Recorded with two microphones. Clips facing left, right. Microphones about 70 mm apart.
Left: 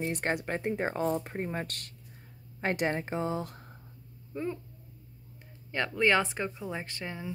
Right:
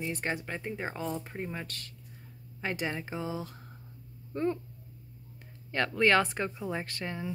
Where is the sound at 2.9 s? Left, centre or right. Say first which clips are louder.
Left 4 dB; left.